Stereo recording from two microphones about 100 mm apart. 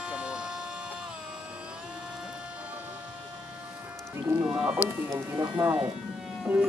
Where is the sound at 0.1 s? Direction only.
10° right (ahead or behind).